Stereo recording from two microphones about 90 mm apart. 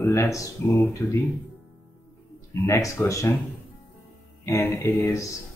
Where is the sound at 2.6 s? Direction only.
30° left (ahead or behind).